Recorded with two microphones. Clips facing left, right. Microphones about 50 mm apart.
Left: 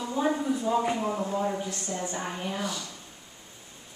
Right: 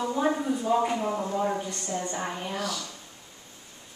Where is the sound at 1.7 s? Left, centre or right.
Centre.